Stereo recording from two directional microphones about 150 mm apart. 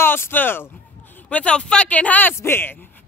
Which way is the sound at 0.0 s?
15° left (ahead or behind).